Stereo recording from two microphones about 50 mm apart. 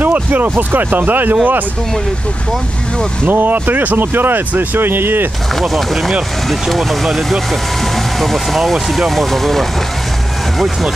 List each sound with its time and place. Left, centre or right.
0.0 s speech: right
3.3 s speech: right
5.5 s speech: centre